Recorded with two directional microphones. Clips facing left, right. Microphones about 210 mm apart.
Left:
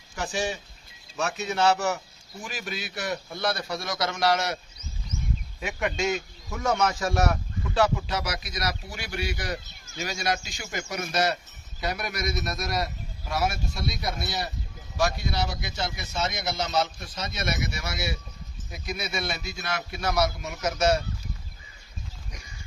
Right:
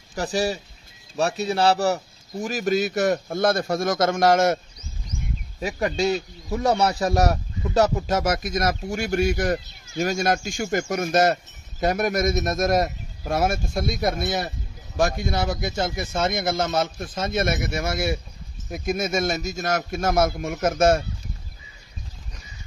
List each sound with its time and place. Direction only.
0.1 s a man's voice: 35° right (ahead or behind)
5.6 s a man's voice: 35° right (ahead or behind)